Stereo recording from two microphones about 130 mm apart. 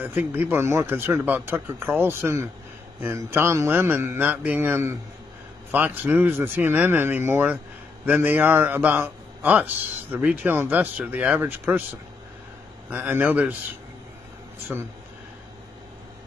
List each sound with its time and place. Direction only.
0.0 s a man's voice: 15° right (ahead or behind)